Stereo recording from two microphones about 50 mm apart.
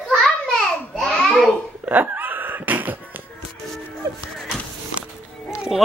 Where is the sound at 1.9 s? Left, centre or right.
Right.